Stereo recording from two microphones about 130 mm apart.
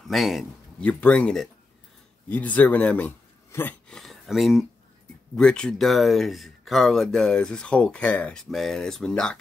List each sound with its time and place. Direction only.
0.1 s speech: centre (ahead or behind)
0.8 s speech: 10° left (ahead or behind)
3.9 s speech: centre (ahead or behind)